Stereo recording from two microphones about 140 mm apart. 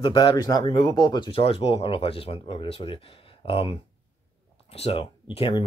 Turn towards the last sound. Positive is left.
turn(degrees=40)  # may be behind; listen again after turning